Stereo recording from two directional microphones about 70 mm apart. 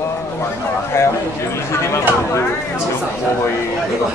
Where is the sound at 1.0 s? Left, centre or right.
Left.